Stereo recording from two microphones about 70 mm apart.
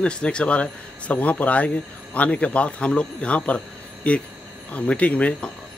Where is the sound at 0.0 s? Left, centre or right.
Centre.